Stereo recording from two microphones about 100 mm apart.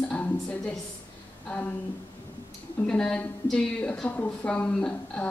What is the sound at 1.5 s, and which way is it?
Speech, 15° left (ahead or behind).